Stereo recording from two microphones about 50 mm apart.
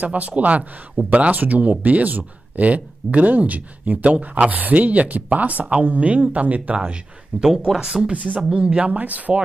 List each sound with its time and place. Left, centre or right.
0.0 s speech: right; by 8.0 s centre
8.0 s speech: right
8.4 s speech: centre; by 9.4 s right